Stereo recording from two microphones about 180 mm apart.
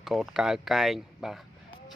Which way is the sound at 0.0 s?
Centre (ahead or behind).